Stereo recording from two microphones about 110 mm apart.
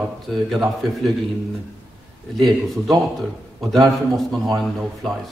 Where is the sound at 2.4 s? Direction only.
Centre (ahead or behind).